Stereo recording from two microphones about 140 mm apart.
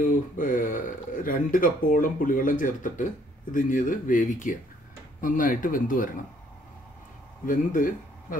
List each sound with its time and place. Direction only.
0.0 s speech: 75° left (ahead or behind)
7.4 s speech: 75° left (ahead or behind)